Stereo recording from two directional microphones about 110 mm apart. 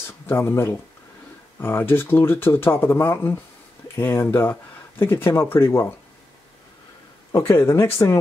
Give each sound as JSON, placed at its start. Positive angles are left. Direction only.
{"t": 0.0, "sound": "speech", "side_deg": 20}
{"t": 7.3, "sound": "speech", "side_deg": 25}